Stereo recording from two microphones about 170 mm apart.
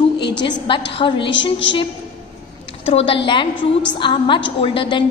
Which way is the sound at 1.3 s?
90° left.